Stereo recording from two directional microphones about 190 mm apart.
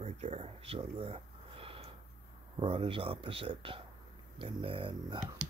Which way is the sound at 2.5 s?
25° right (ahead or behind).